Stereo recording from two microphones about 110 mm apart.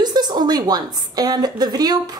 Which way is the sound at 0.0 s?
40° right (ahead or behind).